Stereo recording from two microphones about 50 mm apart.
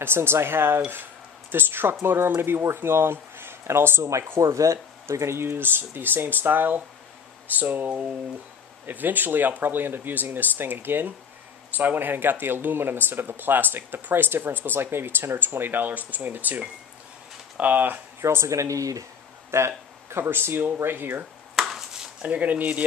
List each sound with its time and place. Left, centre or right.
0.0 s speech: right
4.4 s speech: right
18.2 s speech: right
19.5 s speech: right
20.1 s speech: right
21.5 s a sound: centre
22.2 s speech: right